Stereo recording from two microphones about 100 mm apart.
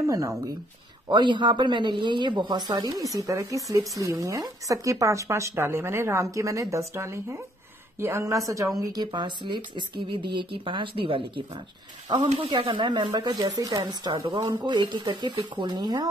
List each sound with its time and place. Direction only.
0.0 s speech: 30° right (ahead or behind)
1.0 s speech: 50° right (ahead or behind)